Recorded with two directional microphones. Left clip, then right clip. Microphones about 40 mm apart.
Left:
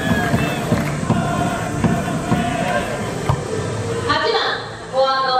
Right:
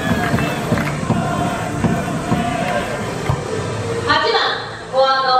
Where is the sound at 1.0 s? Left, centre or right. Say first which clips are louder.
Right 1 dB; centre.